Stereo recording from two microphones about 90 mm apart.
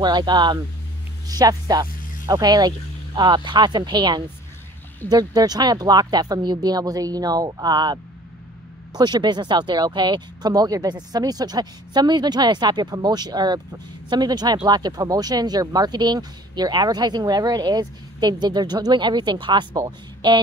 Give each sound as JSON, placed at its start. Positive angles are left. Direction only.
{"t": 0.0, "sound": "speech", "side_deg": -55}
{"t": 1.2, "sound": "speech", "side_deg": -45}